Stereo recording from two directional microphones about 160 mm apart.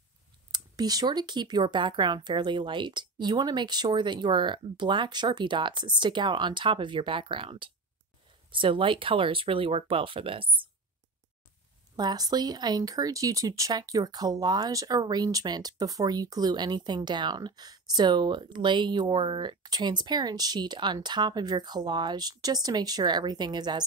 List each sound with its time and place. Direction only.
0.5 s speech: 25° right (ahead or behind)
12.0 s speech: 25° right (ahead or behind)